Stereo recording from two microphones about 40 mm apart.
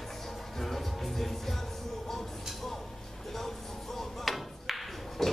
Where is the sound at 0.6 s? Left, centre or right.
Centre.